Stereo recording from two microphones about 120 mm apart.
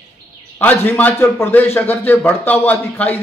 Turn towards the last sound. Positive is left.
turn(degrees=15)  # may be behind; listen again after turning